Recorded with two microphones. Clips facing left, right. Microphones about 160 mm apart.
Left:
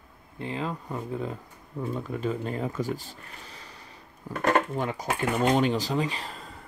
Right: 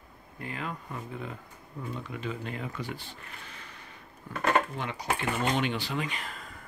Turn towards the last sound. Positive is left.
turn(degrees=30)  # may be behind; listen again after turning